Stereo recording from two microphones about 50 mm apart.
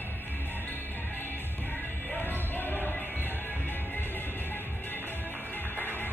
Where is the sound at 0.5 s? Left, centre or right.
Left.